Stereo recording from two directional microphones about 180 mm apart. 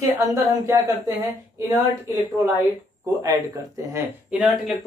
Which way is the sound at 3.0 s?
15° right (ahead or behind).